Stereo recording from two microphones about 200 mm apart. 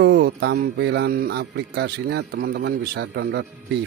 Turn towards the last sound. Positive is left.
turn(degrees=-55)  # may be behind; listen again after turning